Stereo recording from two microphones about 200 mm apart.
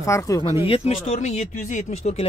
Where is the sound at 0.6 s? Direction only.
30° left (ahead or behind).